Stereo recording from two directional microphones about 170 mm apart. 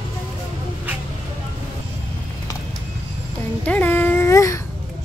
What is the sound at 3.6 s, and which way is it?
Speech, 10° left (ahead or behind).